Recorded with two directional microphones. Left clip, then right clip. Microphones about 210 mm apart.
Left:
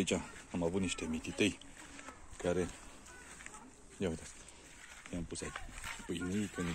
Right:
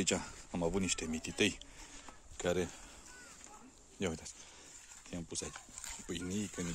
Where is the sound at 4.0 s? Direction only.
20° right (ahead or behind).